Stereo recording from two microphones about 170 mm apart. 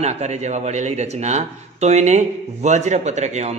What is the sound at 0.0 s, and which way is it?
A man's voice, 40° right (ahead or behind).